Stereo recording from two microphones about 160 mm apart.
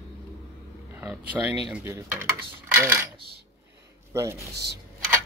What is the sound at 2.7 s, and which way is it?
Speech, 15° right (ahead or behind).